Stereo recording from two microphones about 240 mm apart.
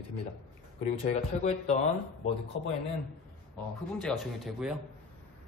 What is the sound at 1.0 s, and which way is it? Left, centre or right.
Speech, left.